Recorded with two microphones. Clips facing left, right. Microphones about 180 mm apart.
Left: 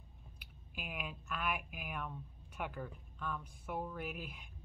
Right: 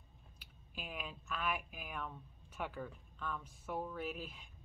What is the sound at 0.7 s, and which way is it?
A woman's voice, 10° left (ahead or behind).